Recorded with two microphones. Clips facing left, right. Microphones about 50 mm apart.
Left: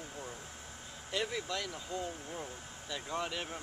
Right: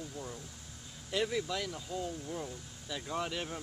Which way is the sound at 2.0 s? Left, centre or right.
Centre.